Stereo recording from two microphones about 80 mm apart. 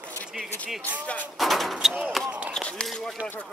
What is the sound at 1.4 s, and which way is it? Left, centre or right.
Speech, centre.